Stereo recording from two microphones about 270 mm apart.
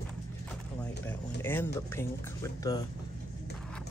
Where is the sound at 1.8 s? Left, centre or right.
Centre.